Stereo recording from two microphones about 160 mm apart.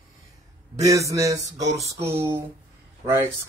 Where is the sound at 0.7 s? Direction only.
20° right (ahead or behind).